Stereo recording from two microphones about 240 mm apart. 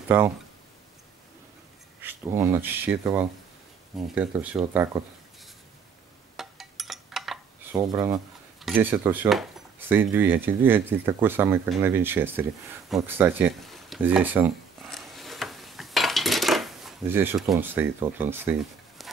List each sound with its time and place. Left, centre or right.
0.1 s speech: centre
2.0 s speech: centre
6.3 s a sound: centre
7.7 s speech: centre
8.5 s speech: centre
12.9 s a sound: centre